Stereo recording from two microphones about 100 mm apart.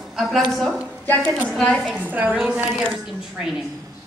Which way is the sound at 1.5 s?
5° left (ahead or behind).